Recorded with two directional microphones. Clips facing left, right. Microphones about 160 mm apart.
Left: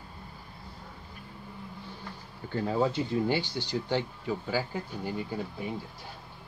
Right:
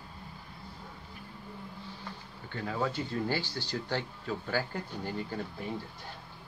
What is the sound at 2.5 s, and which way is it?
Speech, 25° left (ahead or behind).